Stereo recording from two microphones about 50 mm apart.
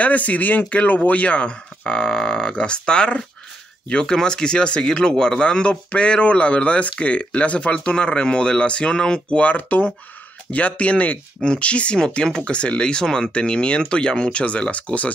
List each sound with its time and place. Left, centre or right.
0.0 s speech: left; by 9.4 s centre
9.4 s speech: left